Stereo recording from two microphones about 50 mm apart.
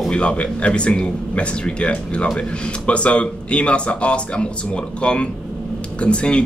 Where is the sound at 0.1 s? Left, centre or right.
Left.